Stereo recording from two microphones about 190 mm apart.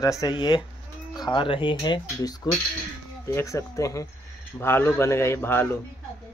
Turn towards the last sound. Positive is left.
turn(degrees=10)  # may be behind; listen again after turning